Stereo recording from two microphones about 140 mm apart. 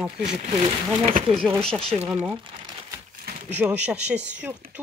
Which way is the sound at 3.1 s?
90° right.